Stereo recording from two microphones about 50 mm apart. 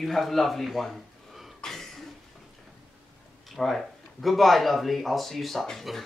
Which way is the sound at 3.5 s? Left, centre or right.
Centre.